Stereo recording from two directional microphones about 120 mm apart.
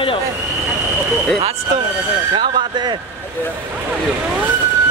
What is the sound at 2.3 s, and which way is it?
Speech, 40° right (ahead or behind).